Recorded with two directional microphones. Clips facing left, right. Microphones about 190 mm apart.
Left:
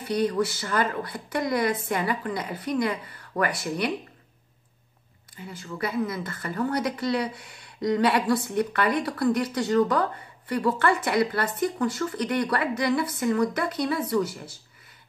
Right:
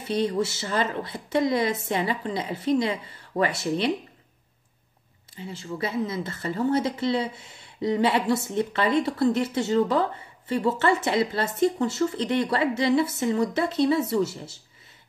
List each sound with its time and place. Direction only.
0.0 s speech: 25° right (ahead or behind)
5.3 s speech: 25° right (ahead or behind)